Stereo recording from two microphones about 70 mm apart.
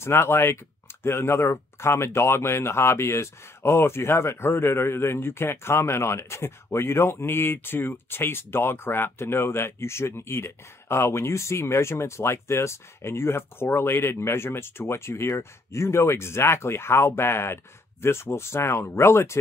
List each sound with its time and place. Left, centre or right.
0.0 s speech: left